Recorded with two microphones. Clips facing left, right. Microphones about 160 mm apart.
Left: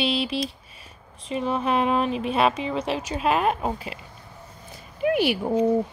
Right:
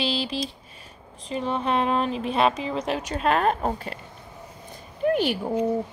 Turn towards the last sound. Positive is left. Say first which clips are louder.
# left 1 dB
turn(degrees=10)  # may be behind; listen again after turning